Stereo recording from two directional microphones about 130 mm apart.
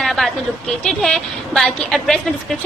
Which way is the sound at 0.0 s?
Centre (ahead or behind).